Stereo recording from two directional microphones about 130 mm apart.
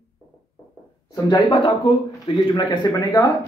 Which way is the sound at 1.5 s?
45° left (ahead or behind).